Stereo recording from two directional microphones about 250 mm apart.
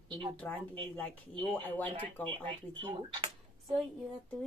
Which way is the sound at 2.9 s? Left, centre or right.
Centre.